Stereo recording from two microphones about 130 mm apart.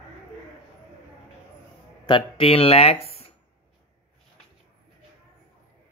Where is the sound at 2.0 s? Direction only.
40° left (ahead or behind).